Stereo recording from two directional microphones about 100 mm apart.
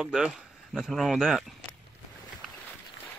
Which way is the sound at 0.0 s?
10° right (ahead or behind).